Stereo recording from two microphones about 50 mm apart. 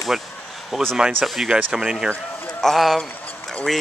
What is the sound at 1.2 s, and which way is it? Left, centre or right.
Speech, centre.